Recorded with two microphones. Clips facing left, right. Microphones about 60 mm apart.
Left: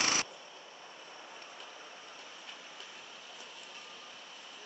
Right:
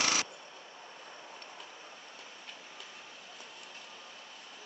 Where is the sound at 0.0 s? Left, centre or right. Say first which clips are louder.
Right 1 dB; right.